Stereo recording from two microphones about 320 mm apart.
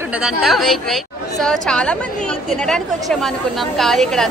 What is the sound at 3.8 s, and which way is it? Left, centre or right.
Speech, centre.